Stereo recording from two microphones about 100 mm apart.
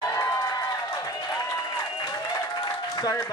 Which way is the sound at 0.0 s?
35° left (ahead or behind).